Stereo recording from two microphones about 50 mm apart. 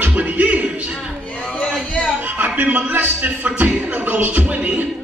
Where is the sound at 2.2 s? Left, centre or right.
Right.